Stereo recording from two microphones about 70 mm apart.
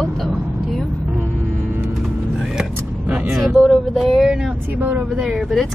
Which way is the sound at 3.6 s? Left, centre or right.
Centre.